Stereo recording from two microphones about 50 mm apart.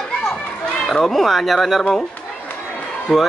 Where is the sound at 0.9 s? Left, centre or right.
Centre.